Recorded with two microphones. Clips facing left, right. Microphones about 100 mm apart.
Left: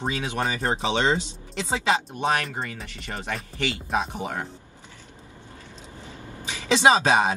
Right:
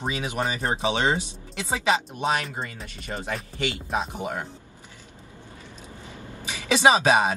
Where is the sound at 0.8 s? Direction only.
15° right (ahead or behind).